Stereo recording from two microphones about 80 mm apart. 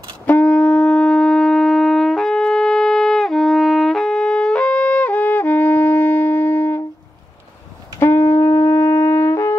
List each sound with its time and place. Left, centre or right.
0.3 s wind instrument: left
8.0 s wind instrument: left